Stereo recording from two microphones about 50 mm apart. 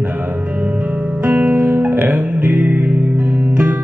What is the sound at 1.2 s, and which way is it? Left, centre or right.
Music, right.